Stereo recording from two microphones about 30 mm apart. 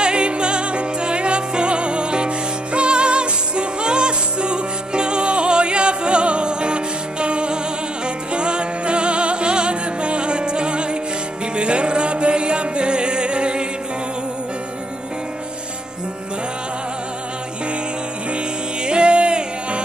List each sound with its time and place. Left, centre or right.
0.0 s music: right
18.9 s music: right